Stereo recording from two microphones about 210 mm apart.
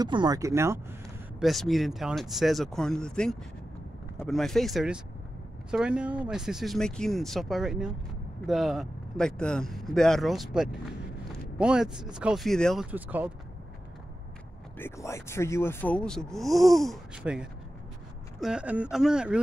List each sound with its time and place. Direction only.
0.0 s speech: 20° right (ahead or behind)
1.4 s speech: centre (ahead or behind)
12.9 s speech: 10° right (ahead or behind)
14.8 s speech: 15° left (ahead or behind); by 19.4 s 5° right (ahead or behind)